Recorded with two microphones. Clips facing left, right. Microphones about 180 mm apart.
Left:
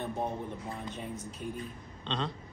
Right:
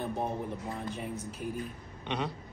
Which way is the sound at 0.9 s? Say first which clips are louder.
Right 2 dB; 5° right (ahead or behind).